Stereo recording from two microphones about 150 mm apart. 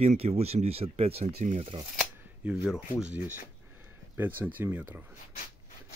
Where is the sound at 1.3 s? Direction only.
60° right (ahead or behind).